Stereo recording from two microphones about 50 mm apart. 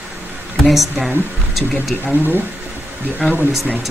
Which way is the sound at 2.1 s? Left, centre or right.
Right.